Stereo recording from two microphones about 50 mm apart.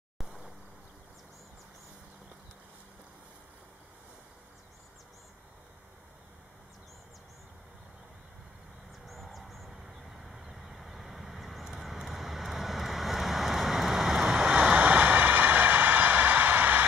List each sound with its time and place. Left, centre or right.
0.2 s a sound: centre
9.0 s vehicle: centre
14.5 s vehicle: right